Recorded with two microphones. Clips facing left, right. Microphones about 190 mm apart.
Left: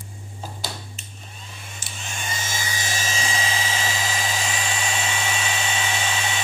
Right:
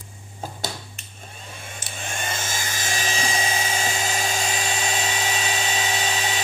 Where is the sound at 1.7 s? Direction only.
55° right (ahead or behind).